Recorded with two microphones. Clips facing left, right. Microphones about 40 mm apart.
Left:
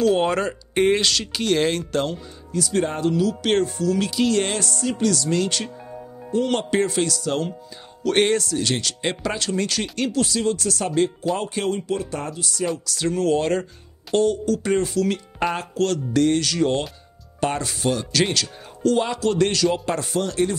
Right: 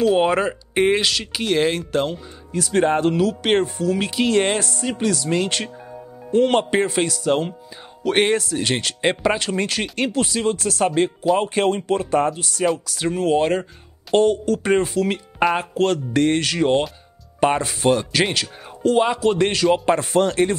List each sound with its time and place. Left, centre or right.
0.0 s speech: centre
2.5 s speech: right
3.4 s speech: right
6.6 s speech: right
12.7 s speech: right
14.1 s speech: right